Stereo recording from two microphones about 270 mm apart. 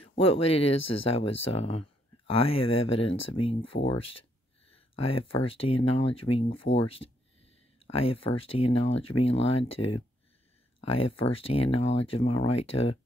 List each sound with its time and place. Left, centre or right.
0.2 s speech: left